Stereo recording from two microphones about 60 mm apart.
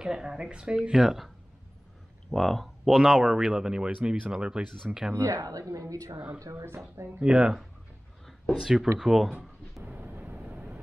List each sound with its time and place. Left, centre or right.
0.0 s speech: centre
2.3 s speech: centre
5.1 s speech: right
5.4 s a woman's voice: right
6.1 s speech: right
6.5 s speech: right
7.2 s speech: centre
8.5 s speech: centre
9.8 s vehicle: right